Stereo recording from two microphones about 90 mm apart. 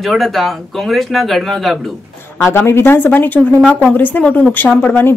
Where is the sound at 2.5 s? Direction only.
25° left (ahead or behind).